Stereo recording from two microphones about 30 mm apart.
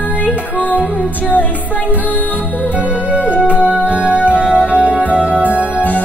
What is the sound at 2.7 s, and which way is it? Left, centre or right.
Music, right.